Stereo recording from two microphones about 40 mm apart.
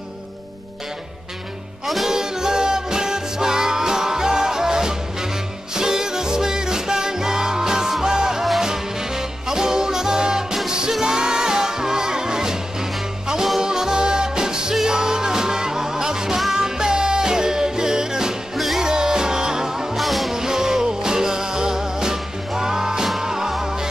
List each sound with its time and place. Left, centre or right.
2.0 s music: centre
13.6 s music: centre
20.0 s music: centre
20.3 s music: centre